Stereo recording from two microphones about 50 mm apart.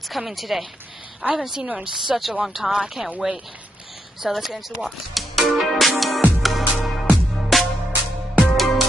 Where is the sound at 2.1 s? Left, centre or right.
Centre.